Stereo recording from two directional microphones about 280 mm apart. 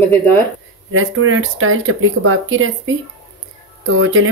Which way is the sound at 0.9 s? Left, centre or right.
Right.